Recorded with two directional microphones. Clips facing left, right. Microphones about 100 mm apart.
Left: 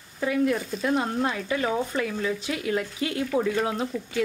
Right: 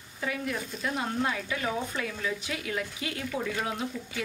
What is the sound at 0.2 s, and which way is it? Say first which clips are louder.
Speech: left 9 dB; 40° left (ahead or behind).